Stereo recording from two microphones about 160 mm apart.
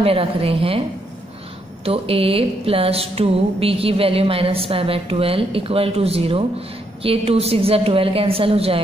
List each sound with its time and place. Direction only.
0.0 s speech: 35° right (ahead or behind)
1.9 s speech: 35° right (ahead or behind)